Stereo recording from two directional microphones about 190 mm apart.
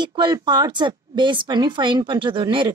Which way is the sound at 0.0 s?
25° right (ahead or behind).